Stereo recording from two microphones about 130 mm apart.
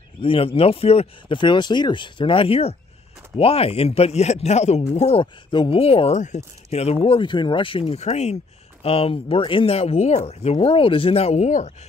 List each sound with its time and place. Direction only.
0.2 s speech: 45° left (ahead or behind)
1.4 s speech: 35° left (ahead or behind); by 8.4 s 60° left (ahead or behind)
8.8 s speech: 50° left (ahead or behind)